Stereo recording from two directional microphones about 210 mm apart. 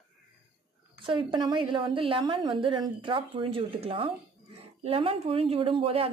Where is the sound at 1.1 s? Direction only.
25° right (ahead or behind).